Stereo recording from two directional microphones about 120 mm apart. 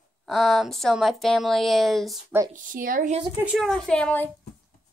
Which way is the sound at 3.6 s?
5° left (ahead or behind).